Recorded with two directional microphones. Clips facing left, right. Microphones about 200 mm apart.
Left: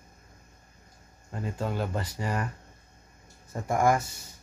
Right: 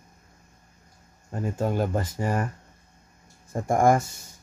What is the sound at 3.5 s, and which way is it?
Speech, 50° right (ahead or behind).